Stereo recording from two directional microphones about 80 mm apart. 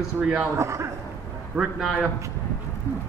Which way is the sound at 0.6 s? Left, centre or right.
Right.